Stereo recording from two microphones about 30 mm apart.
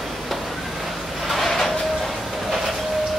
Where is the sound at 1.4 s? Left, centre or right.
Centre.